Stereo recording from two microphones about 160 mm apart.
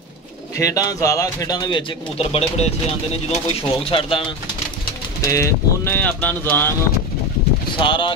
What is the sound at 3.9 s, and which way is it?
Speech, 35° left (ahead or behind).